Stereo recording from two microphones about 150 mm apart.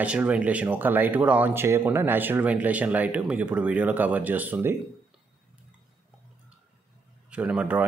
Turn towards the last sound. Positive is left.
turn(degrees=-10)  # may be behind; listen again after turning